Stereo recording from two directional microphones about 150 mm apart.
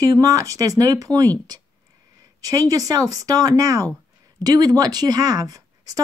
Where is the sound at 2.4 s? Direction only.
25° right (ahead or behind).